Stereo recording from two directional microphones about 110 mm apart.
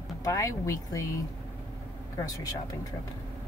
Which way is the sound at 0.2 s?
30° left (ahead or behind).